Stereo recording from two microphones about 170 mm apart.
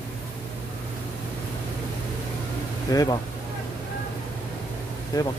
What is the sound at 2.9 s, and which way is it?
Speech, 20° left (ahead or behind).